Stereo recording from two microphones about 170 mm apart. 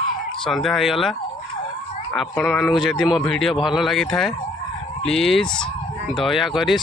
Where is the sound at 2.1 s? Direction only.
Centre (ahead or behind).